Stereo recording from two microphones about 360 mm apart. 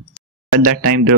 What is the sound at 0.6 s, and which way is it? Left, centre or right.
Speech, right.